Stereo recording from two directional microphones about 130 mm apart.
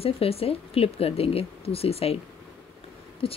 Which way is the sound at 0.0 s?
50° left (ahead or behind).